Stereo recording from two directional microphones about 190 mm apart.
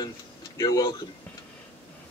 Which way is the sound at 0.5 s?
20° left (ahead or behind).